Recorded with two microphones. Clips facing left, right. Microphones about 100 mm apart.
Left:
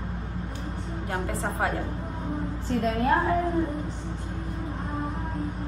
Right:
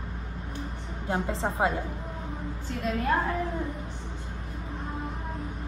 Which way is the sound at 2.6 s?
30° left (ahead or behind).